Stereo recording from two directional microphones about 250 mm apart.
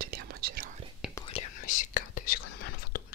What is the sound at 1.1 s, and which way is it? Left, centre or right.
Whispering, left.